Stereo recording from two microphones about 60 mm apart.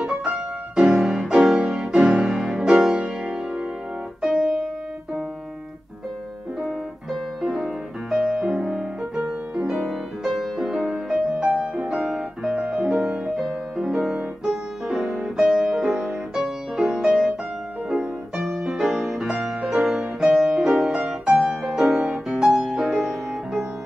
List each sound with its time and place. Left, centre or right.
0.0 s music: centre
4.2 s keyboard: centre
6.6 s piano: centre
8.3 s music: centre
15.4 s music: centre